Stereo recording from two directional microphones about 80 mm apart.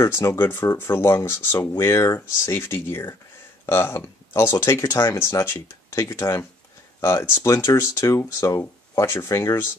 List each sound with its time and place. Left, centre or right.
0.0 s speech: left